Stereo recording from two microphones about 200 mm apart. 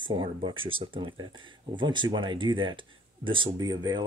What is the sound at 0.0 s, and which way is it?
Speech, 25° right (ahead or behind).